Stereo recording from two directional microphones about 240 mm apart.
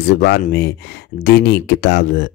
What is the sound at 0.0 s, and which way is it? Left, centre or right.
Speech, left.